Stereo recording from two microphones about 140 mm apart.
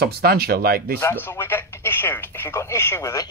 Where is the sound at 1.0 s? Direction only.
15° left (ahead or behind).